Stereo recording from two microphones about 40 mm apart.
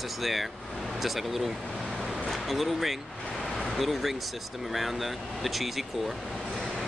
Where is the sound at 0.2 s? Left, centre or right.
Centre.